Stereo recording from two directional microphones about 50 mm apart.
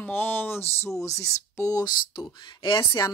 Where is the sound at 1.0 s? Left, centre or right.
Left.